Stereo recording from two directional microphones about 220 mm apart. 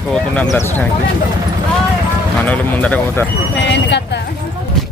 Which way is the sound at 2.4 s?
5° left (ahead or behind).